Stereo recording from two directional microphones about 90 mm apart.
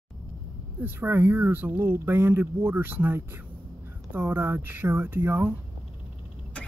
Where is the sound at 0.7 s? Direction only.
25° right (ahead or behind).